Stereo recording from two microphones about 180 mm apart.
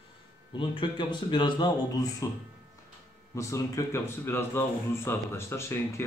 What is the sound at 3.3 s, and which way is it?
A man's voice, 15° left (ahead or behind).